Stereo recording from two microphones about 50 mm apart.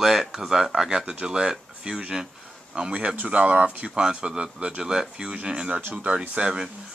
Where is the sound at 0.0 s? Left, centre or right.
Centre.